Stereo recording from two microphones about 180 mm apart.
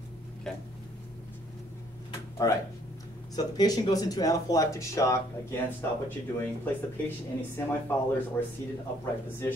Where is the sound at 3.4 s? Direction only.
20° left (ahead or behind).